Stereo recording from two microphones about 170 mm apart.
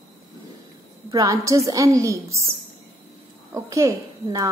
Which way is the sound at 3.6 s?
20° right (ahead or behind).